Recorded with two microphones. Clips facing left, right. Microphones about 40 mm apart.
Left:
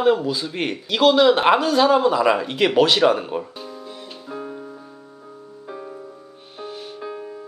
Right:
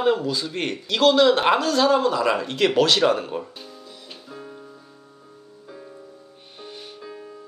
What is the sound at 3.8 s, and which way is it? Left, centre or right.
Music, centre.